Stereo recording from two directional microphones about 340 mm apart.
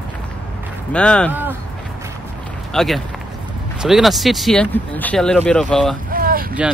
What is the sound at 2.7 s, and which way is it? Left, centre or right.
Speech, centre.